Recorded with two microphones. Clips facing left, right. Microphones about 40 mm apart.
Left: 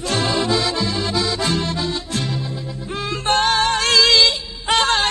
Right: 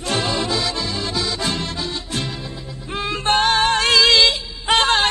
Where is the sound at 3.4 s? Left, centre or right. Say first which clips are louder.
Right 1 dB; centre.